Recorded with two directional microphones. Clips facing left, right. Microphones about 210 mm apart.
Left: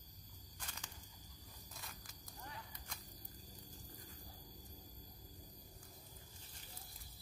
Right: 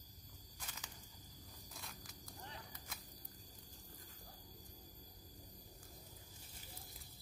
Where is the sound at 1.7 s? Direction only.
Centre (ahead or behind).